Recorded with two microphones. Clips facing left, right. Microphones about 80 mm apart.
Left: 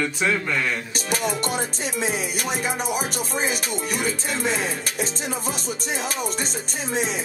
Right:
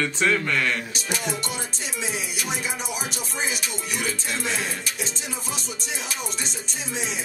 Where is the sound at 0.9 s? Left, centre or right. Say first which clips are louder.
Left 4 dB; left.